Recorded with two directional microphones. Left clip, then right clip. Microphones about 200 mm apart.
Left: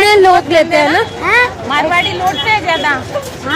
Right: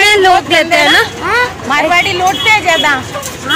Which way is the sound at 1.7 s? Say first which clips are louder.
Right 6 dB; 30° right (ahead or behind).